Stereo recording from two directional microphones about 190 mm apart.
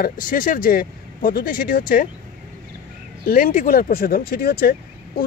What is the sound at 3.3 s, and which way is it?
Speech, 45° left (ahead or behind).